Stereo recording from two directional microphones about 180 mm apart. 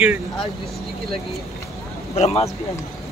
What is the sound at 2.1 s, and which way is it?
Speech, 35° left (ahead or behind).